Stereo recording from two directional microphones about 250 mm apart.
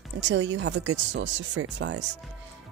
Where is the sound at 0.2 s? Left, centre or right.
Right.